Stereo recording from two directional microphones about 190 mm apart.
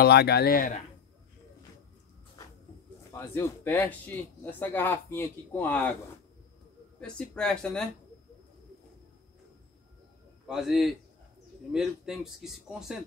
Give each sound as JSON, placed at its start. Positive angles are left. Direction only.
{"t": 0.0, "sound": "speech", "side_deg": 55}
{"t": 3.1, "sound": "speech", "side_deg": 15}
{"t": 7.0, "sound": "speech", "side_deg": 5}
{"t": 10.4, "sound": "speech", "side_deg": 0}